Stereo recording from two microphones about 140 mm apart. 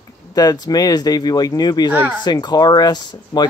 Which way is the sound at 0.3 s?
30° left (ahead or behind).